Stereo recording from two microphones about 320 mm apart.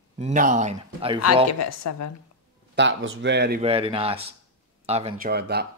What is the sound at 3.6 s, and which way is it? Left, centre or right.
Speech, centre.